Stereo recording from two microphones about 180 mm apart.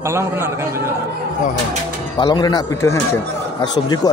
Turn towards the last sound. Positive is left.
turn(degrees=25)  # may be behind; listen again after turning